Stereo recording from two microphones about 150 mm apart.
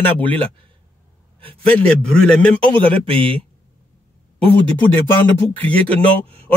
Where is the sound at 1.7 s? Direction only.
10° left (ahead or behind).